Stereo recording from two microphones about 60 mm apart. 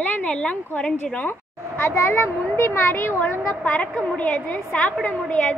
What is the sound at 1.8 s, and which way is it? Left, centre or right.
A woman's voice, left.